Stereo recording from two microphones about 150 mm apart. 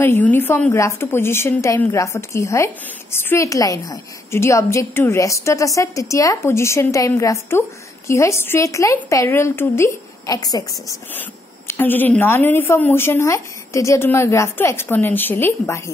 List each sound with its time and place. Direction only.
0.0 s speech: 15° left (ahead or behind)
11.1 s speech: 10° left (ahead or behind)